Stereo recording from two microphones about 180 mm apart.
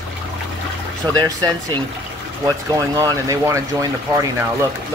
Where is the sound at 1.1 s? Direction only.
20° right (ahead or behind).